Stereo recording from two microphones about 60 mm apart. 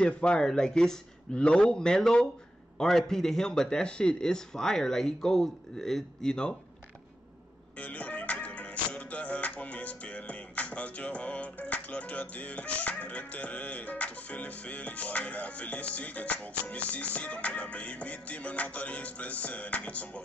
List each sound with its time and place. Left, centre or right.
0.0 s speech: centre
7.8 s music: left